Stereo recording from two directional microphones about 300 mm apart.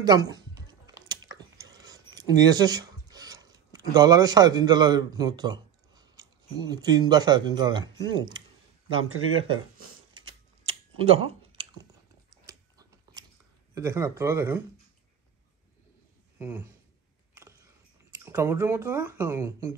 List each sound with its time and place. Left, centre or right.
0.0 s chewing: centre
9.3 s speech: centre
11.0 s chewing: centre
12.4 s biting: centre
13.7 s speech: centre
16.3 s speech: centre
17.4 s a sound: centre
18.2 s speech: centre